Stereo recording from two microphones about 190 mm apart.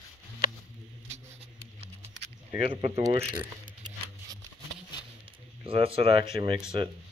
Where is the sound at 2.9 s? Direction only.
15° right (ahead or behind).